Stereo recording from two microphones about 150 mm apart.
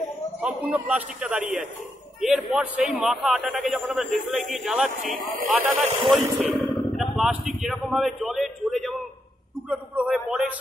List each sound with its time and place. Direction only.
0.4 s a man's voice: 10° right (ahead or behind)
5.0 s speech: 65° right (ahead or behind)
5.5 s a man's voice: 10° right (ahead or behind)